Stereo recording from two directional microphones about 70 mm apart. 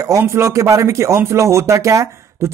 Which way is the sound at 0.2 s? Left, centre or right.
Right.